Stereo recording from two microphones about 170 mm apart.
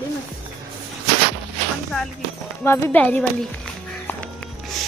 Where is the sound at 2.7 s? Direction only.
10° left (ahead or behind).